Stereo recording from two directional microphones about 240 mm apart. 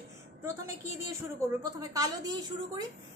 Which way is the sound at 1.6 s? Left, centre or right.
Centre.